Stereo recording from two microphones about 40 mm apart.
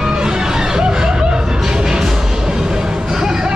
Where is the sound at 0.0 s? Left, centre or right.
Centre.